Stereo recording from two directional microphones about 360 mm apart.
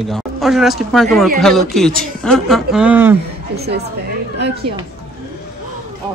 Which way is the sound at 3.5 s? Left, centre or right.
Right.